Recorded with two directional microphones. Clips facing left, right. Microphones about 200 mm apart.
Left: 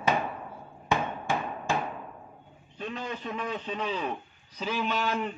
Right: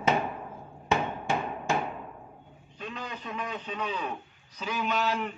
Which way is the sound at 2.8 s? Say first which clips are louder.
Left 4 dB; 30° left (ahead or behind).